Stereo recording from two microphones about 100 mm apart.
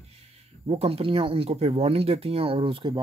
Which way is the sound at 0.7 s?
80° right.